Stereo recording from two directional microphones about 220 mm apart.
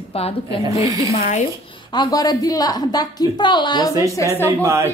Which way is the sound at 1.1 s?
35° left (ahead or behind).